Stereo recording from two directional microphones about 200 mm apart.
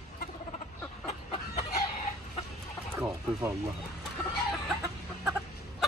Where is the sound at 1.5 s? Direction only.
35° left (ahead or behind).